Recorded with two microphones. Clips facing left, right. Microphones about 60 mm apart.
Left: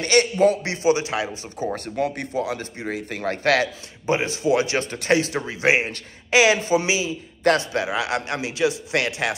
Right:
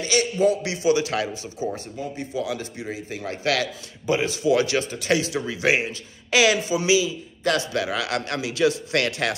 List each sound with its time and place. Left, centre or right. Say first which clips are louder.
0.0 s a man's voice: left 3 dB; left
1.4 s a man's voice: left 1 dB; left
2.0 s speech: left 7 dB; left
2.3 s a man's voice: left 2 dB; left
4.7 s a man's voice: left 2 dB; left
5.4 s a man's voice: left 2 dB; left